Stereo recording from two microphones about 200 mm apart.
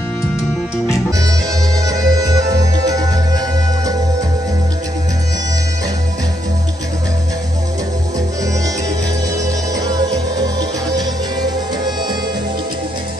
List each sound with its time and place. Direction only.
1.9 s music: 20° right (ahead or behind)
9.8 s music: 20° right (ahead or behind)